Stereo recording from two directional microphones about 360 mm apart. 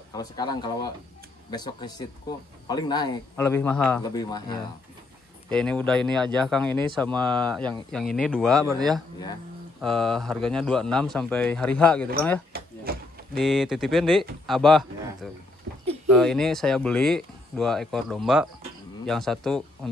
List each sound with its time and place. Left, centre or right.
0.1 s a man's voice: centre
12.5 s door: right
13.4 s speech: centre
16.1 s speech: centre